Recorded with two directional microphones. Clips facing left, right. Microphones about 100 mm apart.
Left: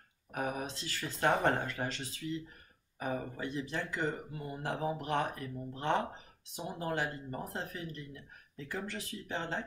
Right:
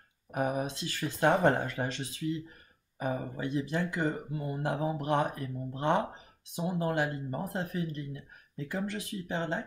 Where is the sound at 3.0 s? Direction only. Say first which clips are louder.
Right 3 dB; 15° right (ahead or behind).